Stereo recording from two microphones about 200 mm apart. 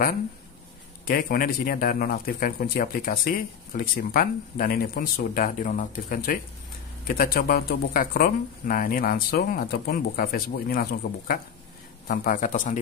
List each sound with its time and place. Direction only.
1.0 s a man's voice: 45° left (ahead or behind)